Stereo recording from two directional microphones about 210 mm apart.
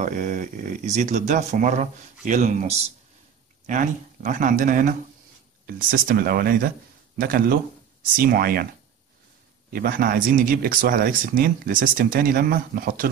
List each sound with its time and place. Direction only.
0.0 s speech: 40° right (ahead or behind)
9.7 s speech: 45° right (ahead or behind)